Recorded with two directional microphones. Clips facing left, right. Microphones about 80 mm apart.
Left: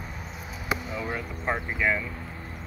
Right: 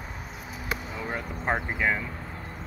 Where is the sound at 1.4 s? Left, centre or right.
Right.